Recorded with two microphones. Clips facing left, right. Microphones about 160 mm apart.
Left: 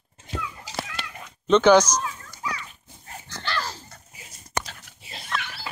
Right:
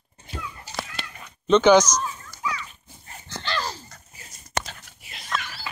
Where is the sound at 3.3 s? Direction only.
20° right (ahead or behind).